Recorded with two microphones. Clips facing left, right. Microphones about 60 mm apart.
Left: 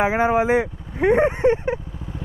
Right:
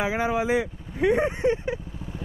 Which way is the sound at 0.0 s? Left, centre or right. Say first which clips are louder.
Left 6 dB; left.